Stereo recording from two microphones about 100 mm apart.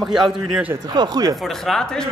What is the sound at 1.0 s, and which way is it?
Speech, 45° right (ahead or behind).